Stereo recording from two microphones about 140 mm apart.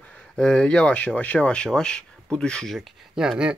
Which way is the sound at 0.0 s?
10° left (ahead or behind).